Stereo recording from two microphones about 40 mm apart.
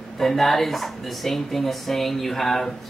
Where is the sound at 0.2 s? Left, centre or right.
Centre.